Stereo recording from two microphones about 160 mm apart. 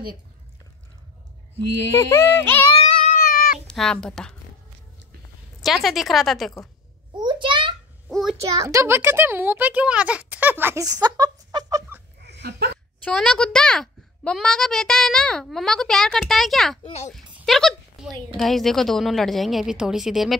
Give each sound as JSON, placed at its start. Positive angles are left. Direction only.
{"t": 2.0, "sound": "music", "side_deg": 15}
{"t": 3.1, "sound": "cat", "side_deg": 65}
{"t": 3.6, "sound": "speech", "side_deg": 5}
{"t": 5.6, "sound": "a child's voice", "side_deg": 0}
{"t": 7.2, "sound": "a sound", "side_deg": -30}
{"t": 8.1, "sound": "a sound", "side_deg": 0}
{"t": 8.4, "sound": "a child's voice", "side_deg": -20}
{"t": 12.2, "sound": "a sound", "side_deg": -90}
{"t": 13.0, "sound": "a child's voice", "side_deg": 5}